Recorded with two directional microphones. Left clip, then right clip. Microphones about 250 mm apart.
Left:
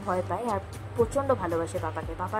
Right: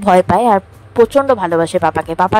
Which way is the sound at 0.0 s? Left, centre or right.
Right.